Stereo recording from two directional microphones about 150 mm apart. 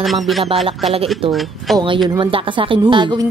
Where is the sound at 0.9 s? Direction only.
40° right (ahead or behind).